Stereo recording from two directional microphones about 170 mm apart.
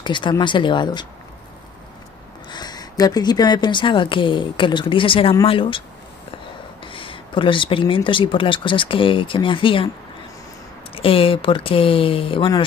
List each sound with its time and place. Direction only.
0.0 s speech: 25° left (ahead or behind)
2.5 s speech: 25° left (ahead or behind)
11.0 s speech: 30° left (ahead or behind)